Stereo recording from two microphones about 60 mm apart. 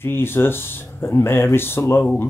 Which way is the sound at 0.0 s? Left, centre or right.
Left.